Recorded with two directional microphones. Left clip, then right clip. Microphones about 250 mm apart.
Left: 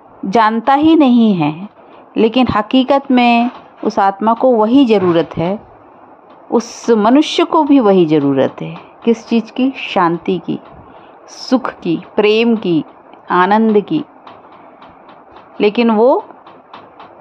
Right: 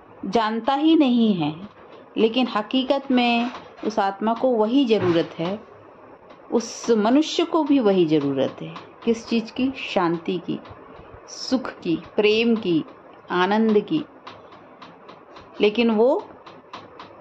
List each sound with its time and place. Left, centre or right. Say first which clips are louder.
0.3 s a woman's voice: left 11 dB; left
15.5 s a woman's voice: left 7 dB; left